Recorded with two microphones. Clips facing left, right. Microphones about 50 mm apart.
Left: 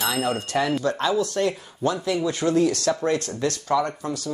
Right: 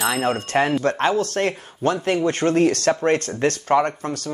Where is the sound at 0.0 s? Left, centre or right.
Right.